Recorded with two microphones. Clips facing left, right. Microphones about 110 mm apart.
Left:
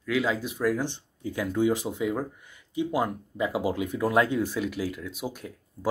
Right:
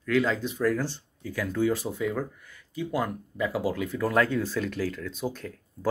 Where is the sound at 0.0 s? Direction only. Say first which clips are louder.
Right 2 dB; 5° left (ahead or behind).